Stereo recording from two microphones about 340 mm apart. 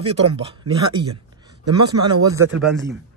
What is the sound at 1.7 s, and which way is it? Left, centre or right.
A man's voice, centre.